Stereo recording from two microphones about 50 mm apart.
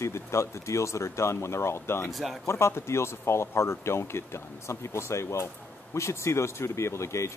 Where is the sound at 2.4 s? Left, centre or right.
Left.